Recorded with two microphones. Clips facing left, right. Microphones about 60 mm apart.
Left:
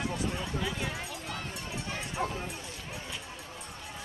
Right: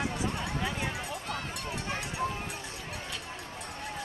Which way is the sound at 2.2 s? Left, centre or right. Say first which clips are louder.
Even; left.